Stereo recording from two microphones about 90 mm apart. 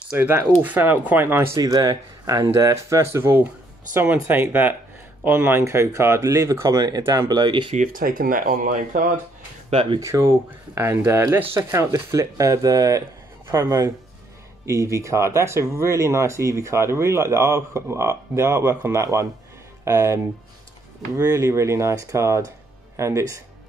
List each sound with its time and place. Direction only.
0.2 s speech: 25° right (ahead or behind)
1.6 s speech: 45° right (ahead or behind)
9.9 s speech: 35° right (ahead or behind)
21.2 s speech: 35° right (ahead or behind)